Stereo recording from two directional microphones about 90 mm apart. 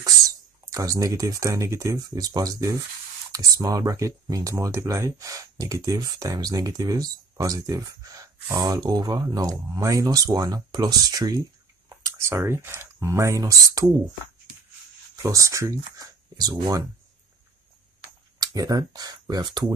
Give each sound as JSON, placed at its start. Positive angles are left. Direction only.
{"t": 0.7, "sound": "speech", "side_deg": -40}
{"t": 2.0, "sound": "speech", "side_deg": -45}
{"t": 15.2, "sound": "speech", "side_deg": -35}
{"t": 18.4, "sound": "speech", "side_deg": -40}